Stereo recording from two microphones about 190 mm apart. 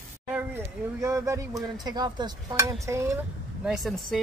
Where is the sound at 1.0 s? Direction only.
15° right (ahead or behind).